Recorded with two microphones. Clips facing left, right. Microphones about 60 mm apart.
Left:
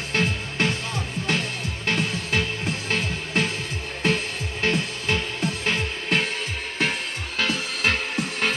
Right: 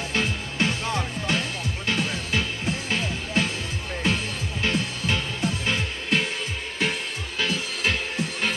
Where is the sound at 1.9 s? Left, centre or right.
Left.